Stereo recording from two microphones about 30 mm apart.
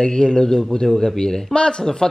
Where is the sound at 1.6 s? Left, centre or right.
Left.